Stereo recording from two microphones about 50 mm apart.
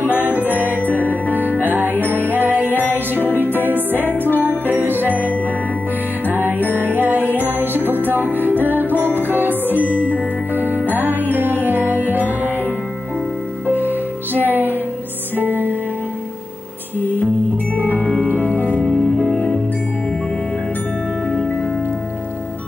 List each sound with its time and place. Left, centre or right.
0.0 s music: left
1.3 s music: right
2.7 s music: left
3.6 s music: right
4.3 s music: left
4.6 s jingle bell: right
6.7 s music: right
8.9 s music: left
9.5 s music: right
9.8 s music: left
10.5 s music: right
12.2 s music: left
13.7 s music: right
18.8 s music: centre